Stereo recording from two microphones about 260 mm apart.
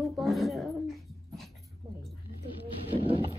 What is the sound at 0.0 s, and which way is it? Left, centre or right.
Dog, centre.